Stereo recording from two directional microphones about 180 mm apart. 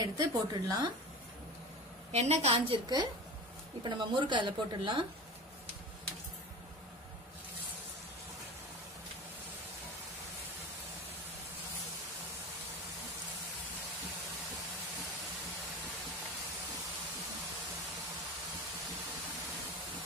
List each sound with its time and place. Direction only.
0.0 s a woman's voice: 20° right (ahead or behind)
2.1 s a woman's voice: 40° right (ahead or behind)
3.8 s a woman's voice: 25° right (ahead or behind)